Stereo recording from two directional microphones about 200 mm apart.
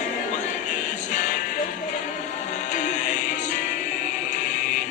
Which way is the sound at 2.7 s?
40° left (ahead or behind).